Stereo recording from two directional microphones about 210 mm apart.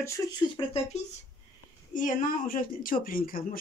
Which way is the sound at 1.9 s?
40° left (ahead or behind).